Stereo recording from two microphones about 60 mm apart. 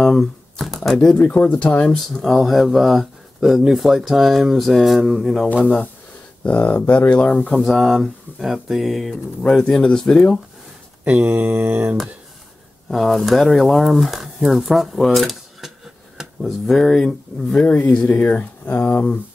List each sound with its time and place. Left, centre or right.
0.0 s speech: centre
1.1 s speech: left
2.3 s speech: centre
6.4 s speech: left
7.7 s speech: centre
9.1 s speech: centre
11.1 s mantra: right
12.9 s speech: centre
17.6 s speech: left